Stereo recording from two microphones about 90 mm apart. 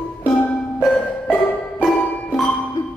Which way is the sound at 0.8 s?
15° left (ahead or behind).